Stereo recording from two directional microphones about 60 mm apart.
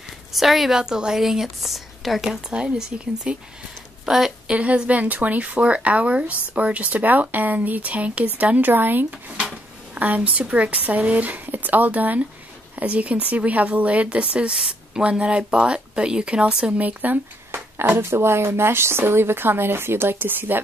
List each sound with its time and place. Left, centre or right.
0.3 s speech: centre
2.5 s speech: centre
4.6 s speech: right
9.4 s drawer open or close: right
10.5 s speech: right
17.9 s speech: right